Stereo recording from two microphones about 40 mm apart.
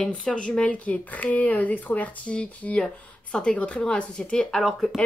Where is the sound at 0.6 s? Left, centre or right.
Left.